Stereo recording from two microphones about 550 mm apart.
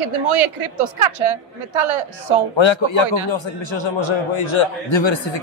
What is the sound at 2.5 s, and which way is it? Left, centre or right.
A man's voice, left.